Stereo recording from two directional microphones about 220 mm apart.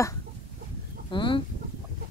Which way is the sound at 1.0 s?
20° left (ahead or behind).